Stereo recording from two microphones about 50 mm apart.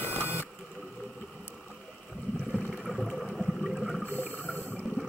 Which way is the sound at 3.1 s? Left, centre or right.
Centre.